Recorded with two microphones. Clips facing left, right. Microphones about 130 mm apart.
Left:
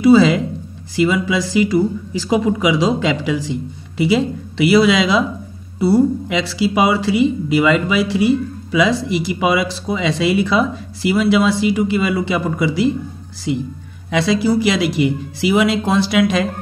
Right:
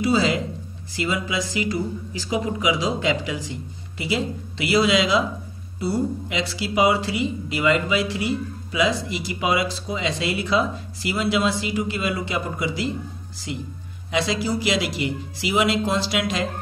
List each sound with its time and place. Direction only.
0.0 s speech: 70° left (ahead or behind)
2.2 s speech: 85° left
14.1 s speech: 65° left (ahead or behind)